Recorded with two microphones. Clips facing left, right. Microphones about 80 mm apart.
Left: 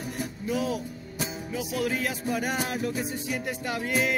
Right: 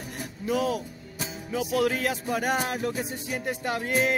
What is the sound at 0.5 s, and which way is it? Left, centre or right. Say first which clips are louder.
Music: right 3 dB; right.